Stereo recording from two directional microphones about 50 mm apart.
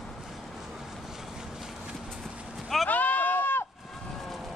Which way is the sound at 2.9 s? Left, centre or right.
Left.